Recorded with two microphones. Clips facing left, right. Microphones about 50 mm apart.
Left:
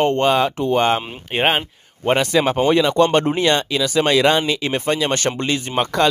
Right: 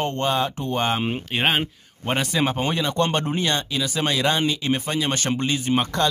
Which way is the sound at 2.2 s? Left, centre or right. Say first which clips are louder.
Left 6 dB; left.